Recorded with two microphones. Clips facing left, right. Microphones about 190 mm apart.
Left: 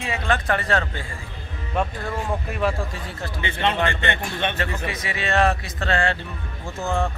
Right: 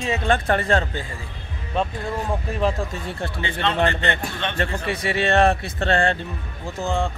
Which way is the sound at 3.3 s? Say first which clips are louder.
Left 2 dB; 20° left (ahead or behind).